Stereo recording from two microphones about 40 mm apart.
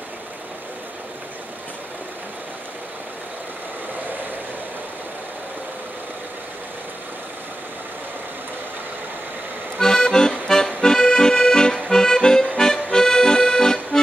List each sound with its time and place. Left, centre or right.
9.8 s music: centre
10.8 s accordion: centre